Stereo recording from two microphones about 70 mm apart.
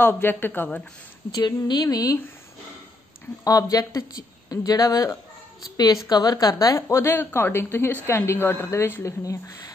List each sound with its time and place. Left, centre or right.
0.0 s a woman's voice: left
1.7 s speech: left
3.4 s speech: left
5.6 s a woman's voice: left
9.0 s speech: left